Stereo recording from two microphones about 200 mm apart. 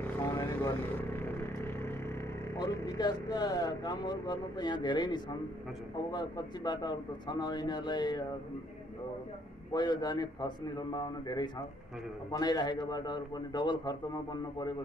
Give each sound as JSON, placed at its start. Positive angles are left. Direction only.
{"t": 0.0, "sound": "vehicle", "side_deg": 10}
{"t": 6.1, "sound": "a man's voice", "side_deg": 20}
{"t": 9.7, "sound": "a man's voice", "side_deg": 20}